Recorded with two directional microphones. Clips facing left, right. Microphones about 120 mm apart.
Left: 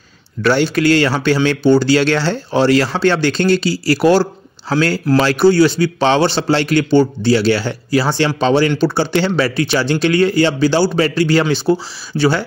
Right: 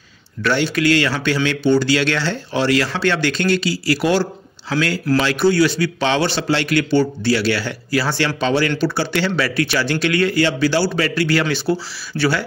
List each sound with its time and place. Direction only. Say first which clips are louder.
0.4 s speech: left 4 dB; 35° left (ahead or behind)